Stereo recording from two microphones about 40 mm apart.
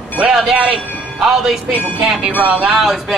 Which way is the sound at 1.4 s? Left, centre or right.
Centre.